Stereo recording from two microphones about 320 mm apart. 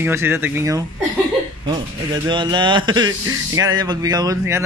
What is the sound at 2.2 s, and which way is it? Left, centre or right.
Speech, centre.